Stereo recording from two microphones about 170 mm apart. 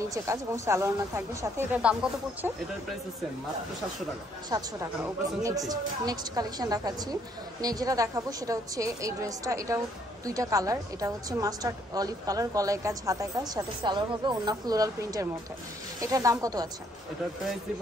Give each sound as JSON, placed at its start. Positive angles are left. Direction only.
{"t": 0.0, "sound": "speech", "side_deg": -15}
{"t": 4.5, "sound": "a woman's voice", "side_deg": -20}